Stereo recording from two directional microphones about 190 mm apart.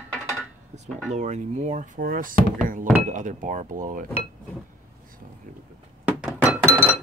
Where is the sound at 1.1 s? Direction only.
35° right (ahead or behind).